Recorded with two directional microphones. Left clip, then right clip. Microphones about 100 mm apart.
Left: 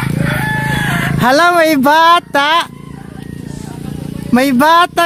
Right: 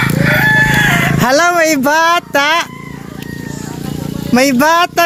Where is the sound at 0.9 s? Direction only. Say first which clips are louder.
Even; 35° left (ahead or behind).